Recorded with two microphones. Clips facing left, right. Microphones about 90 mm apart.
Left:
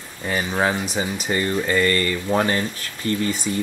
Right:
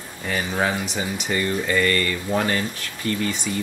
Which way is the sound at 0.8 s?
35° left (ahead or behind).